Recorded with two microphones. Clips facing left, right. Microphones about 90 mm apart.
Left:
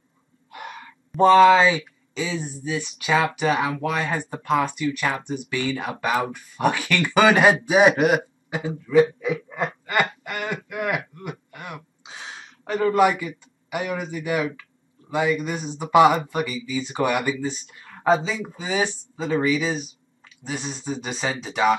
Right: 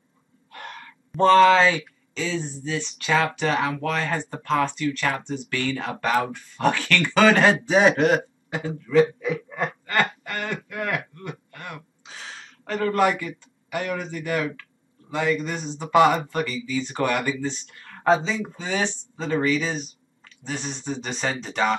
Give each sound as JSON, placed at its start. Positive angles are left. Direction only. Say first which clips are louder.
{"t": 0.5, "sound": "speech", "louder": "left 2 dB", "side_deg": 10}
{"t": 9.2, "sound": "a sound", "louder": "left 1 dB", "side_deg": 15}
{"t": 13.7, "sound": "speech", "louder": "left 1 dB", "side_deg": 10}